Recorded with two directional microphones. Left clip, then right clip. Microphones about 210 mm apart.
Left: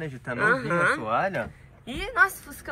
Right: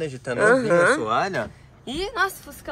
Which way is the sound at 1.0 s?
10° right (ahead or behind).